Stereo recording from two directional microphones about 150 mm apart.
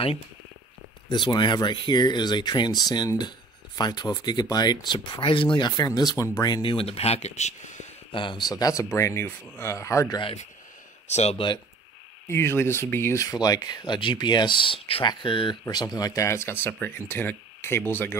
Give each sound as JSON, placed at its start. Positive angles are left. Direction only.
{"t": 1.0, "sound": "speech", "side_deg": 30}
{"t": 8.1, "sound": "speech", "side_deg": 30}
{"t": 11.1, "sound": "speech", "side_deg": 45}
{"t": 12.3, "sound": "speech", "side_deg": 15}